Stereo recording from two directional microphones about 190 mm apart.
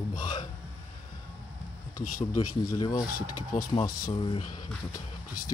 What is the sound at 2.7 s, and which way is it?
Speech, 20° left (ahead or behind).